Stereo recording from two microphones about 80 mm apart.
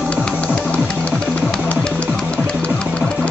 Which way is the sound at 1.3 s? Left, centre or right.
Centre.